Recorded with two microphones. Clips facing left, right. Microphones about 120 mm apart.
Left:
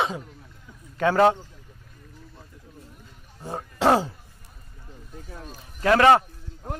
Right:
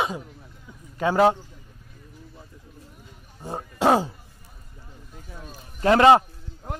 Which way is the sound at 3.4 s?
10° right (ahead or behind).